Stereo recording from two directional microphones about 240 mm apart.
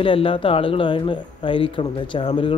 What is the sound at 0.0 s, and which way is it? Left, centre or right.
A man's voice, left.